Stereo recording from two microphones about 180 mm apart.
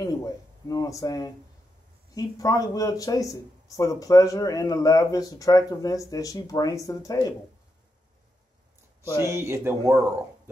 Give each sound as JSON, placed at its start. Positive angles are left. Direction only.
{"t": 0.0, "sound": "a sound", "side_deg": 20}
{"t": 2.1, "sound": "speech", "side_deg": 20}
{"t": 9.2, "sound": "speech", "side_deg": -15}